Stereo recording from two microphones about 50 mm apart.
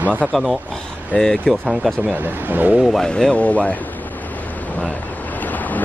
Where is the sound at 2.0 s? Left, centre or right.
Right.